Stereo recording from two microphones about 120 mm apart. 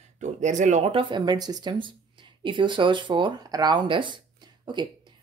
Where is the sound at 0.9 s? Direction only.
45° right (ahead or behind).